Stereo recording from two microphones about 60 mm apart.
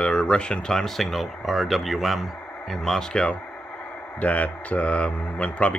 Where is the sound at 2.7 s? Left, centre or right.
Centre.